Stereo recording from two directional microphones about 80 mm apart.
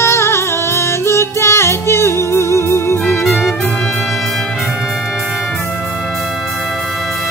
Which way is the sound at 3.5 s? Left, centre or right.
Left.